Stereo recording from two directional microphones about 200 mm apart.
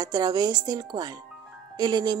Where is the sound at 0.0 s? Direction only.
20° right (ahead or behind).